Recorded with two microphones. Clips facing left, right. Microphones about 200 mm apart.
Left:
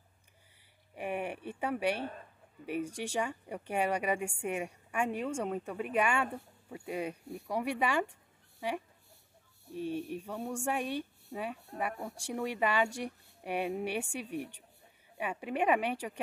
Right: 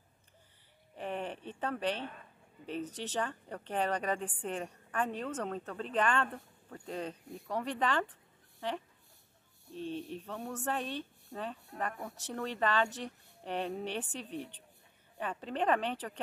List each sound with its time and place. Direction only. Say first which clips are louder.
0.9 s a woman's voice: left 2 dB; 10° left (ahead or behind)